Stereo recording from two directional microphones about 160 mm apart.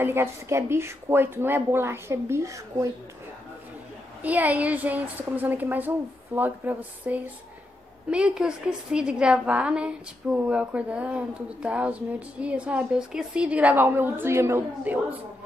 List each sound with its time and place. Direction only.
0.0 s a woman's voice: 15° right (ahead or behind)
4.2 s a woman's voice: 10° right (ahead or behind)